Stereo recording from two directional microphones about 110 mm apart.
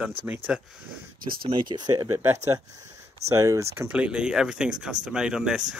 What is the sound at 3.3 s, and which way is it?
Speech, 30° right (ahead or behind).